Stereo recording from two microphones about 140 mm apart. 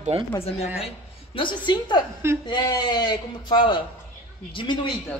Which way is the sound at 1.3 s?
35° left (ahead or behind).